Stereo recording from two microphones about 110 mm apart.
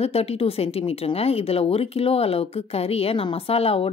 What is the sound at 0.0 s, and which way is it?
Speech, 70° left (ahead or behind).